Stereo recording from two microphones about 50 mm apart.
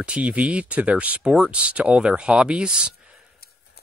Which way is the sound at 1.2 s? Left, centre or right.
Centre.